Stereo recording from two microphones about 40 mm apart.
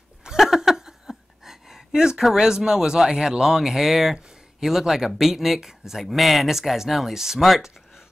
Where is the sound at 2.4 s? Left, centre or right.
Centre.